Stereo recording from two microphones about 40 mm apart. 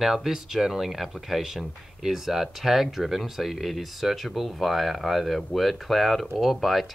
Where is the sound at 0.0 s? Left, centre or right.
Centre.